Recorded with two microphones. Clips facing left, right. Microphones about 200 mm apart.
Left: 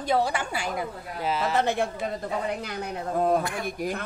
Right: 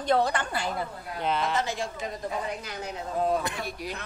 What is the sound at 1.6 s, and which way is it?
Speech, 60° left (ahead or behind).